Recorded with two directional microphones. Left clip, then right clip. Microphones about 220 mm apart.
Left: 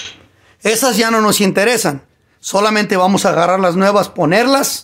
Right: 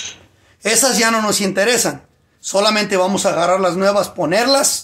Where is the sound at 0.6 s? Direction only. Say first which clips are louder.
Left 2 dB; 65° left (ahead or behind).